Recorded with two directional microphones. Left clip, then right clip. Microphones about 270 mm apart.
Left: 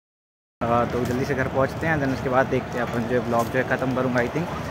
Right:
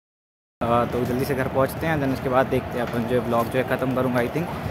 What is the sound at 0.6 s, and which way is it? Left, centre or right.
Speech, centre.